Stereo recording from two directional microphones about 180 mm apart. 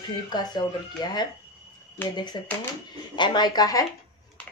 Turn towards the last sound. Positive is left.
turn(degrees=20)  # may be behind; listen again after turning